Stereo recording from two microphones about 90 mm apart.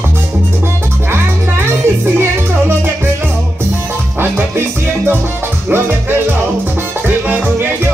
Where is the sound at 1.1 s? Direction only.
25° right (ahead or behind).